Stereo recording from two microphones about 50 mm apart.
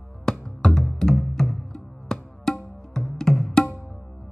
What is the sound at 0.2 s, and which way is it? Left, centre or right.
Music, centre.